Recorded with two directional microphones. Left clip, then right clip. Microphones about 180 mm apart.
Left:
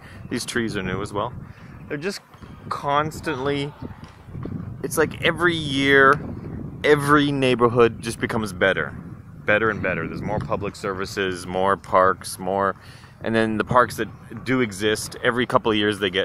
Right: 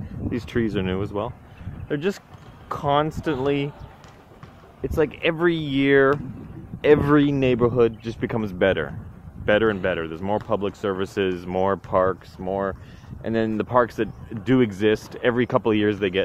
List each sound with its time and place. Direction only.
0.5 s speech: 15° right (ahead or behind)
1.9 s speech: 35° right (ahead or behind)
2.7 s speech: 20° right (ahead or behind)
3.3 s speech: 10° right (ahead or behind)
4.8 s speech: 5° right (ahead or behind)
7.2 s speech: centre (ahead or behind)
8.2 s speech: 5° right (ahead or behind); by 11.2 s 25° right (ahead or behind)
11.2 s speech: 10° right (ahead or behind); by 13.7 s 10° left (ahead or behind)
13.8 s speech: 20° right (ahead or behind)
15.1 s speech: 10° right (ahead or behind)